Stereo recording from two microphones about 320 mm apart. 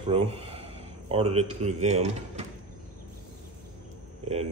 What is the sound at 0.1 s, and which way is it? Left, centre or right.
Speech, centre.